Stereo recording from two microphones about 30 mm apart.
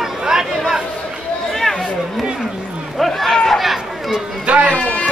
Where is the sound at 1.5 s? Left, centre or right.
Centre.